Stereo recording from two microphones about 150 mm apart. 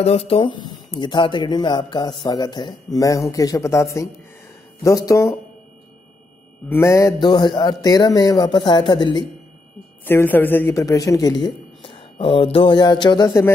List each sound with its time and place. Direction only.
0.0 s speech: 40° left (ahead or behind); by 5.4 s 20° left (ahead or behind)
6.7 s speech: 20° left (ahead or behind)
7.2 s speech: 30° left (ahead or behind)
10.0 s speech: 15° left (ahead or behind)